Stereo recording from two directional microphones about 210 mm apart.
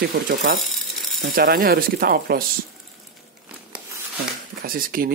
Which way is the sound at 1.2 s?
45° right (ahead or behind).